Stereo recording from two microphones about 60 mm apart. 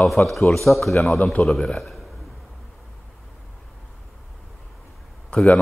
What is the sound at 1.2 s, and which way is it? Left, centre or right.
Speech, centre.